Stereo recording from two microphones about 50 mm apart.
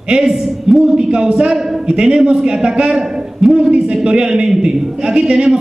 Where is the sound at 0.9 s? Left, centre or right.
Centre.